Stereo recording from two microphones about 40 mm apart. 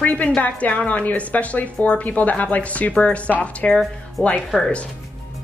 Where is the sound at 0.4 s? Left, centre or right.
Left.